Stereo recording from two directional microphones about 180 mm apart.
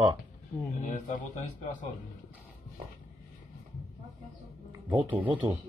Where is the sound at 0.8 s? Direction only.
40° left (ahead or behind).